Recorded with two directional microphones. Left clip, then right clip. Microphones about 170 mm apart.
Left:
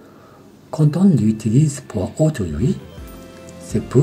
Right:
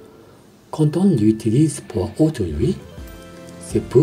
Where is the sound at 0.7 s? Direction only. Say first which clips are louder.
Even; 20° right (ahead or behind).